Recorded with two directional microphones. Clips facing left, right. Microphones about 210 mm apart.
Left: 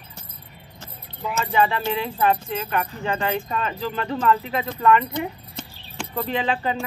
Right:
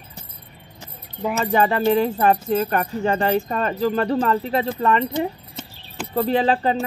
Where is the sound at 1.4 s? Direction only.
45° right (ahead or behind).